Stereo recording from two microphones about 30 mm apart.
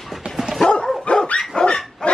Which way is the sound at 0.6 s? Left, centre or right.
Left.